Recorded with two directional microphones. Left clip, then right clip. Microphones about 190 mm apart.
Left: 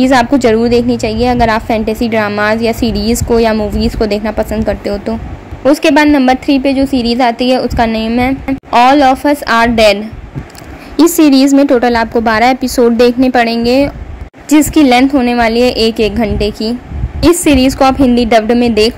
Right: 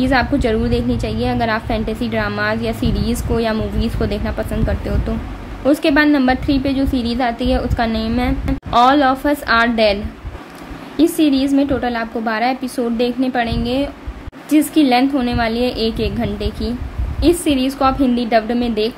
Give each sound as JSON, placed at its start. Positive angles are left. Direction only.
{"t": 0.0, "sound": "a woman's voice", "side_deg": 35}
{"t": 11.0, "sound": "a woman's voice", "side_deg": 45}